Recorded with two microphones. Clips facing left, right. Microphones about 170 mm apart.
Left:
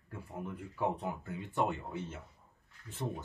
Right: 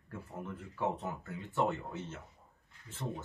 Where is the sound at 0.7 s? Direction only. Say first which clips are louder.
Left 1 dB; 15° left (ahead or behind).